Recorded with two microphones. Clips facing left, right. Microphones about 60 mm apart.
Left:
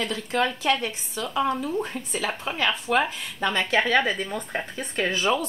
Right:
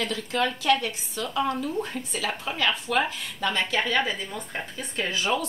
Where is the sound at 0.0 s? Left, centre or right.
Left.